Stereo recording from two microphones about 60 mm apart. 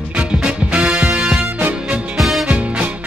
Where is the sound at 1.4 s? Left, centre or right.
Right.